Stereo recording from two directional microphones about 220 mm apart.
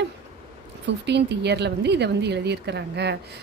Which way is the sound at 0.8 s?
50° right (ahead or behind).